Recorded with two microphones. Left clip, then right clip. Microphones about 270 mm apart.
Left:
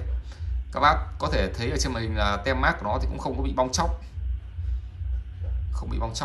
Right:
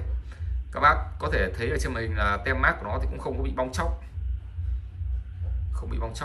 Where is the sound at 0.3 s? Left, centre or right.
Centre.